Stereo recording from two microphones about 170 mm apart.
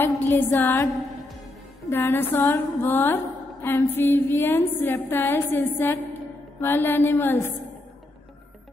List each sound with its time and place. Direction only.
0.0 s music: 10° left (ahead or behind)
1.9 s music: 10° left (ahead or behind)